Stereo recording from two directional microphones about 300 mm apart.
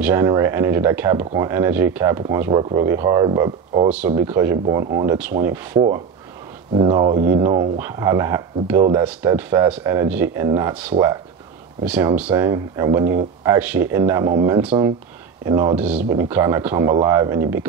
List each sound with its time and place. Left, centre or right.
0.0 s speech: centre